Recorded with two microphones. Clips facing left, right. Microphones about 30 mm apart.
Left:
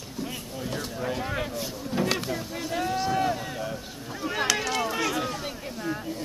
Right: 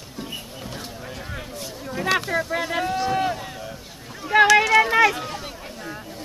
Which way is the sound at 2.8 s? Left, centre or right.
Centre.